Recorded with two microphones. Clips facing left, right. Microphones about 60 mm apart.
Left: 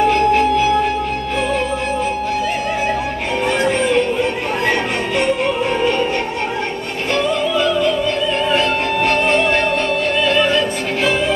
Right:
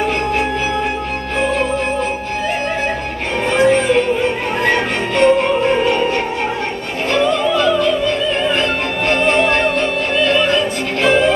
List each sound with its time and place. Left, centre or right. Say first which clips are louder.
3.5 s music: right 5 dB; centre
8.5 s music: left 1 dB; centre